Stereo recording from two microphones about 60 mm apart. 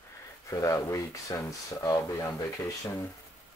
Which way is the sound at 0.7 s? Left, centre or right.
Left.